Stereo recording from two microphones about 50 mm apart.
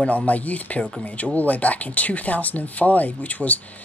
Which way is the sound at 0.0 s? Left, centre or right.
Left.